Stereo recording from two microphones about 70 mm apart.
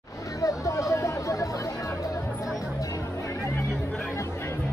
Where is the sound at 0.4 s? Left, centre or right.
Left.